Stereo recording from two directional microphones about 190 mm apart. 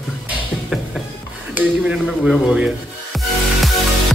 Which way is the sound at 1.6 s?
5° right (ahead or behind).